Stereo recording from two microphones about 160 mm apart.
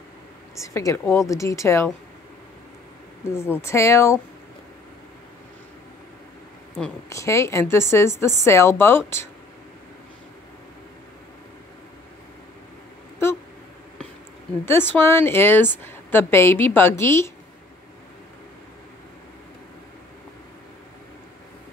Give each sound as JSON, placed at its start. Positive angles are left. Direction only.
{"t": 0.6, "sound": "a woman's voice", "side_deg": 20}
{"t": 3.3, "sound": "a woman's voice", "side_deg": 15}
{"t": 7.1, "sound": "a woman's voice", "side_deg": 20}
{"t": 14.6, "sound": "a woman's voice", "side_deg": 15}